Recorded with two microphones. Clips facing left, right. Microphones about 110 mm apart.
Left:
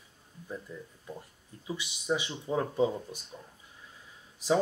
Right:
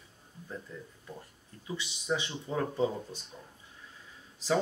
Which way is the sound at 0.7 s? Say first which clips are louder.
Left 2 dB; 10° left (ahead or behind).